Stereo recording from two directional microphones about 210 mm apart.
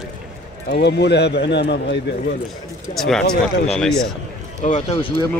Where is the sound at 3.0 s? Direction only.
Centre (ahead or behind).